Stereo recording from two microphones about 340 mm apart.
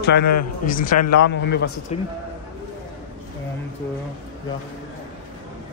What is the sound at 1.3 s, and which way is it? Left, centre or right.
Speech, left.